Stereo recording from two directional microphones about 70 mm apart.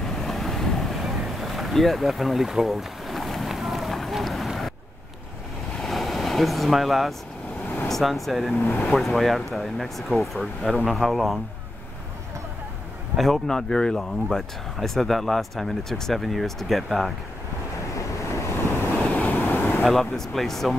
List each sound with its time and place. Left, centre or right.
0.0 s boat: centre
5.8 s vehicle: centre
7.9 s speech: centre
8.5 s speech: left
8.9 s speech: centre
13.1 s speech: centre
19.0 s vehicle: left
19.8 s speech: centre